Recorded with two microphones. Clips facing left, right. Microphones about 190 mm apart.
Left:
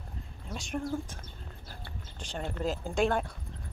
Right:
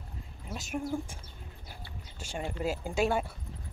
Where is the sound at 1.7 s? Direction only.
10° right (ahead or behind).